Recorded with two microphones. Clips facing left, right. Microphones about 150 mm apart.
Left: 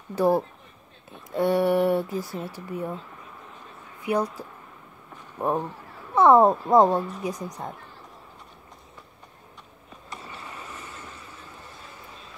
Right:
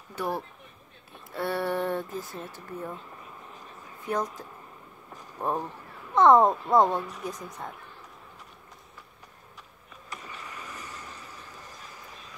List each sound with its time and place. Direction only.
0.1 s speech: 30° left (ahead or behind)
1.3 s speech: 15° left (ahead or behind)
4.0 s speech: 10° left (ahead or behind)
7.0 s speech: 35° left (ahead or behind)
7.2 s speech: 15° left (ahead or behind)
10.0 s vehicle: 30° left (ahead or behind)